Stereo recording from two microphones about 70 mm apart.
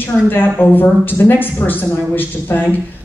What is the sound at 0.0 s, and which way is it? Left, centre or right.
Speech, left.